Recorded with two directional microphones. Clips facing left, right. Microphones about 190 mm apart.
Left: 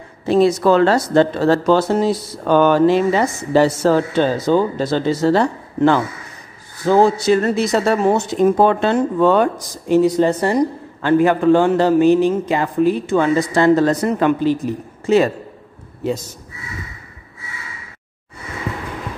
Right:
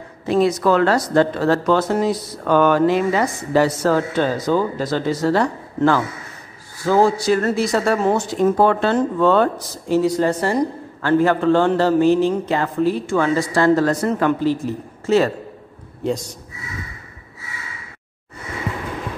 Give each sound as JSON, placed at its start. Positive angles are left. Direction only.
{"t": 0.3, "sound": "speech", "side_deg": 30}
{"t": 16.0, "sound": "a man's voice", "side_deg": 5}